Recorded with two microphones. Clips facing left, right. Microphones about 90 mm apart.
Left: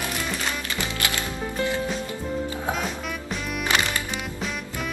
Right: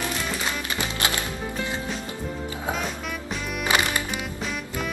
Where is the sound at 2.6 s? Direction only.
Centre (ahead or behind).